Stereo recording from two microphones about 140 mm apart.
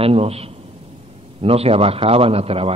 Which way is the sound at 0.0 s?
45° right (ahead or behind).